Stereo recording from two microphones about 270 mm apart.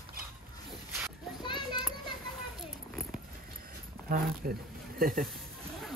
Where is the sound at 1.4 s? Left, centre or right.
Centre.